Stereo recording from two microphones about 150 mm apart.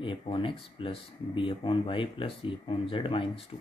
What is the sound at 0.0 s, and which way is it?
Speech, 35° left (ahead or behind).